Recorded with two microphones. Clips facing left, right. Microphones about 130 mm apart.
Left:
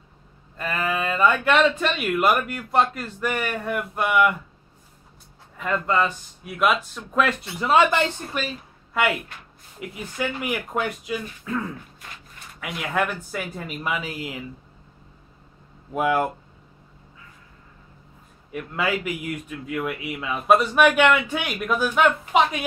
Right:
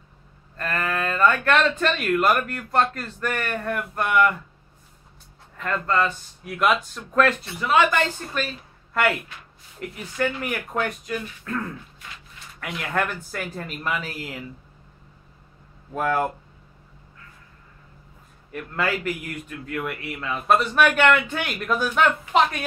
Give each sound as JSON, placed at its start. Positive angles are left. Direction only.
{"t": 0.6, "sound": "speech", "side_deg": 10}
{"t": 5.6, "sound": "speech", "side_deg": 10}
{"t": 7.6, "sound": "speech", "side_deg": 30}
{"t": 8.3, "sound": "a woman's voice", "side_deg": 10}
{"t": 15.9, "sound": "speech", "side_deg": 10}
{"t": 18.5, "sound": "speech", "side_deg": 5}